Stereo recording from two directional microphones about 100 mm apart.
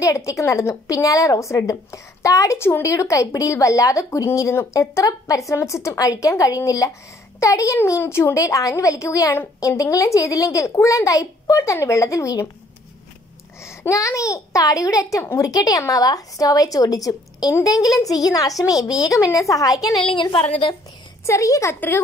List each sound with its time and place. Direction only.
0.0 s a woman's voice: 35° left (ahead or behind)
13.7 s a woman's voice: 30° left (ahead or behind)
20.0 s a woman's voice: 55° left (ahead or behind)
21.3 s a woman's voice: 30° left (ahead or behind)
21.7 s a woman's voice: 20° left (ahead or behind)